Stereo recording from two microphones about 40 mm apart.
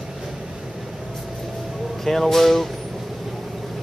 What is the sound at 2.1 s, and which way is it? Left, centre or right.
Speech, centre.